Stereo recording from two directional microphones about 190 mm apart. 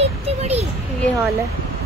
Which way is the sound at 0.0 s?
35° right (ahead or behind).